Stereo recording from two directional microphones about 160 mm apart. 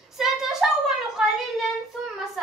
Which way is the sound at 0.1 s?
Centre (ahead or behind).